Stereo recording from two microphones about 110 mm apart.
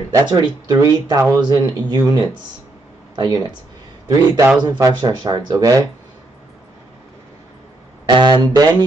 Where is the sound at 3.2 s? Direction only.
40° right (ahead or behind).